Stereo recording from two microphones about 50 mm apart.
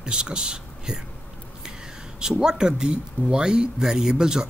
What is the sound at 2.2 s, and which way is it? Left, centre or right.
Speech, centre.